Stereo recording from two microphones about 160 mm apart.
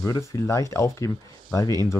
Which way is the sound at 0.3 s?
20° left (ahead or behind).